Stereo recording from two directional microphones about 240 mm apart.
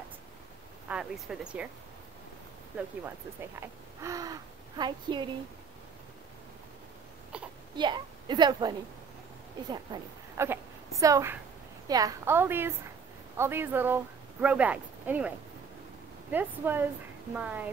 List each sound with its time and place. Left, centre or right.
0.8 s speech: centre
4.0 s speech: centre
7.3 s a sound: centre
7.7 s a woman's voice: centre
10.3 s a woman's voice: centre